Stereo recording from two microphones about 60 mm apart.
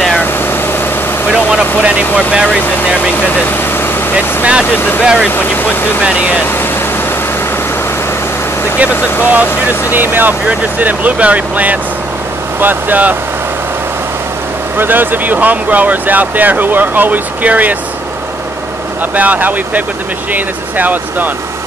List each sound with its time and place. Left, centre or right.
1.3 s vehicle: centre
1.8 s speech: right
4.4 s speech: centre
9.2 s speech: right
14.8 s speech: right
19.1 s speech: right